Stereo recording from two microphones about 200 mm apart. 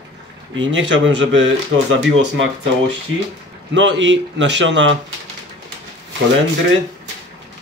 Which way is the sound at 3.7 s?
65° right (ahead or behind).